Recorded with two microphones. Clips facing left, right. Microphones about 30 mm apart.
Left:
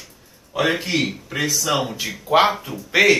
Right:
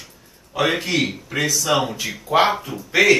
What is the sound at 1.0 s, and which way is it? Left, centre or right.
Speech, centre.